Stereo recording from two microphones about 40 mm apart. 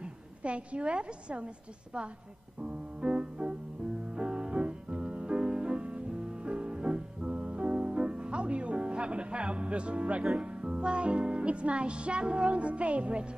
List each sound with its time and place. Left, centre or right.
0.0 s a woman's voice: right
2.6 s music: right